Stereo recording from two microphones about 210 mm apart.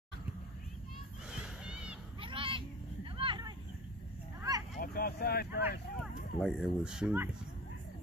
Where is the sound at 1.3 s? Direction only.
5° right (ahead or behind).